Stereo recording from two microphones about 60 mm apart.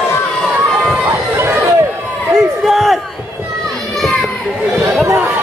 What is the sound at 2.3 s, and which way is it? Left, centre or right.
Crowd, centre.